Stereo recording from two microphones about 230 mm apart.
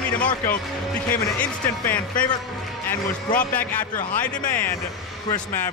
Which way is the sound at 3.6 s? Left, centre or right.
Centre.